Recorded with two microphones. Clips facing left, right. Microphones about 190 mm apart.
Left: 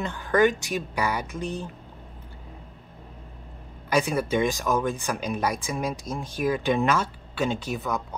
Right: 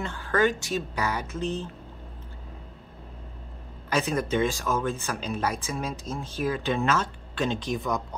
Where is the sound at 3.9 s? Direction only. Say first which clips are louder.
Left 2 dB; 10° left (ahead or behind).